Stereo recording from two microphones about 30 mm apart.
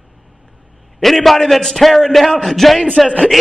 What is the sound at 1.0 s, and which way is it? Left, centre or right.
A man's voice, centre.